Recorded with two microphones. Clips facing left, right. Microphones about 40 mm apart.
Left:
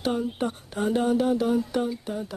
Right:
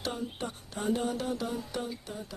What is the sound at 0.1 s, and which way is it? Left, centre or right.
Speech, left.